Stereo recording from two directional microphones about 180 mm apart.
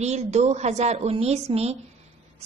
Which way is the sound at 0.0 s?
40° right (ahead or behind).